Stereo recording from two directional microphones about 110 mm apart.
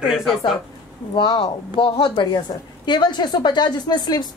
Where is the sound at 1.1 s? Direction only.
45° left (ahead or behind).